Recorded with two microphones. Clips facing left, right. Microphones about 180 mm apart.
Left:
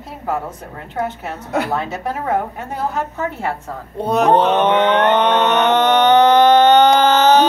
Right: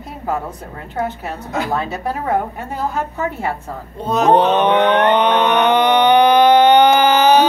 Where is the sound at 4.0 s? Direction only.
65° left (ahead or behind).